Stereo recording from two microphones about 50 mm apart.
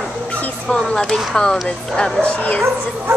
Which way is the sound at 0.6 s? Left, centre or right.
Centre.